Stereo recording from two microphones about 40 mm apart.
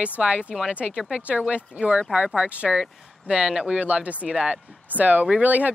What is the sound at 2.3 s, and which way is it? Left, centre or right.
Speech, right.